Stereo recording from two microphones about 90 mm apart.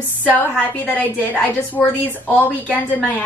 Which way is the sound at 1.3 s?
20° left (ahead or behind).